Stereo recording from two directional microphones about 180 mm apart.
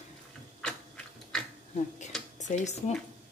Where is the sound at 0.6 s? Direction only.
5° left (ahead or behind).